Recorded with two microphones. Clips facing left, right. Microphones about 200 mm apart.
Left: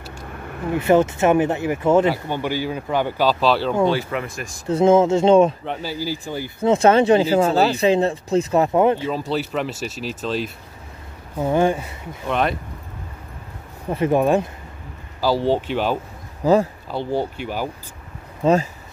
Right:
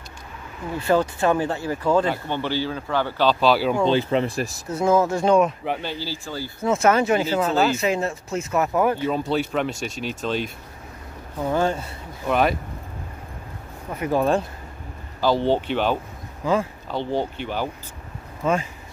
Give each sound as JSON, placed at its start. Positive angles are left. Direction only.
{"t": 0.7, "sound": "speech", "side_deg": 20}
{"t": 3.9, "sound": "speech", "side_deg": -25}
{"t": 4.6, "sound": "speech", "side_deg": 25}
{"t": 5.7, "sound": "speech", "side_deg": 5}
{"t": 6.7, "sound": "speech", "side_deg": 30}
{"t": 9.3, "sound": "speech", "side_deg": 0}
{"t": 11.5, "sound": "speech", "side_deg": 15}
{"t": 12.3, "sound": "speech", "side_deg": -5}
{"t": 13.8, "sound": "speech", "side_deg": 30}
{"t": 14.1, "sound": "speech", "side_deg": 15}
{"t": 16.4, "sound": "speech", "side_deg": 35}
{"t": 16.9, "sound": "speech", "side_deg": 10}
{"t": 18.4, "sound": "speech", "side_deg": 35}